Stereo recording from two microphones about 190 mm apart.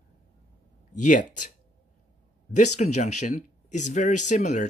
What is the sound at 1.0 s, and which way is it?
Speech, 40° left (ahead or behind).